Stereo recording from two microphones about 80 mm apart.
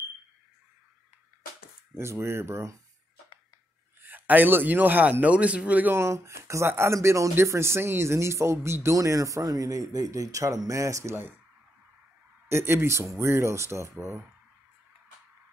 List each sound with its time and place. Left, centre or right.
2.0 s speech: right
4.0 s a man's voice: right
5.9 s speech: right
12.4 s speech: right